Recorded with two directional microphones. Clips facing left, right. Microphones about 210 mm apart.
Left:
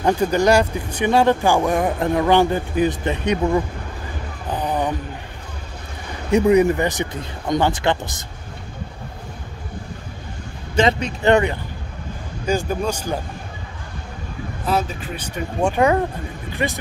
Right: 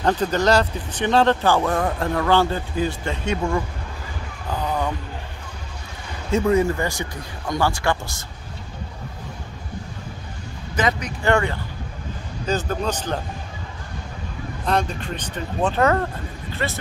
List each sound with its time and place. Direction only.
0.0 s speech: 10° left (ahead or behind)
4.5 s a sound: 15° left (ahead or behind)
6.3 s speech: 15° left (ahead or behind)
10.8 s speech: 25° left (ahead or behind); by 13.2 s 10° left (ahead or behind)
14.7 s speech: 5° left (ahead or behind)